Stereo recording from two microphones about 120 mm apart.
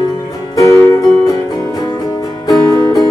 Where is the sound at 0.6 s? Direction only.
20° left (ahead or behind).